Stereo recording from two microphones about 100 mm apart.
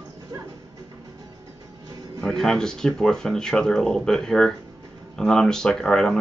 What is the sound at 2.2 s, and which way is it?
Speech, 5° left (ahead or behind).